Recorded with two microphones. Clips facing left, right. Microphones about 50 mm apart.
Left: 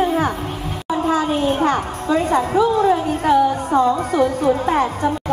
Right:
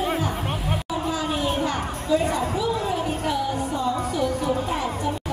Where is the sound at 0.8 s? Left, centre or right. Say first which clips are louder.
Left 11 dB; left.